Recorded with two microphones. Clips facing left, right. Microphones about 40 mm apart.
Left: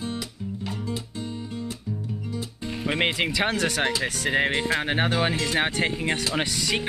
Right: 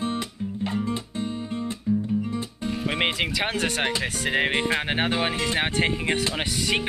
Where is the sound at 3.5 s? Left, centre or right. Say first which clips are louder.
Left 1 dB; right.